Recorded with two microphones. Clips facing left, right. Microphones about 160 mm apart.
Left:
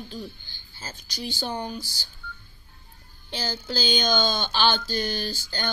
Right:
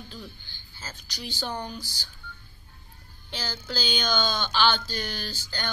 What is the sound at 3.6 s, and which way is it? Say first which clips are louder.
Speech: left 4 dB; 35° left (ahead or behind).